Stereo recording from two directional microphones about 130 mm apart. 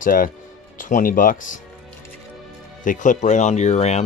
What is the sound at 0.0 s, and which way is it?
Speech, 90° left.